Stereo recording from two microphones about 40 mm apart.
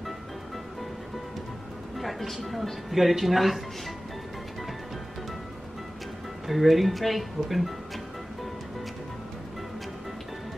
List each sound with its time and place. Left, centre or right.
2.0 s speech: centre
6.4 s speech: centre